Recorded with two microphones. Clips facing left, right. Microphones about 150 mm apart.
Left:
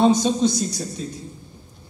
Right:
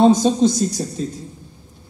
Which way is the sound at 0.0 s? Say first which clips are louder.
Right 4 dB; 45° right (ahead or behind).